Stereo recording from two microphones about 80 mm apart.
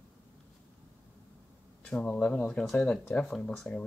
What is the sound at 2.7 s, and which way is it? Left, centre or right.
Speech, centre.